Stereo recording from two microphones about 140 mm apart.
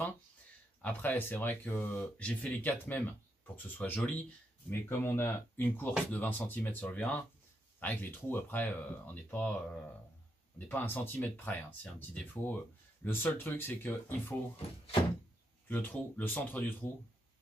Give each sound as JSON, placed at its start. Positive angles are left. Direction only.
{"t": 0.8, "sound": "speech", "side_deg": 10}
{"t": 10.7, "sound": "speech", "side_deg": 15}
{"t": 15.7, "sound": "speech", "side_deg": 10}